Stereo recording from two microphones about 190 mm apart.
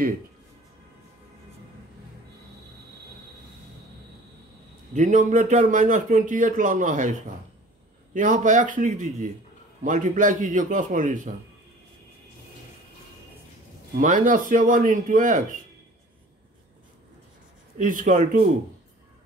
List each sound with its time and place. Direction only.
4.9 s a man's voice: 40° right (ahead or behind)
13.9 s a man's voice: 45° right (ahead or behind)
17.7 s a man's voice: 45° right (ahead or behind)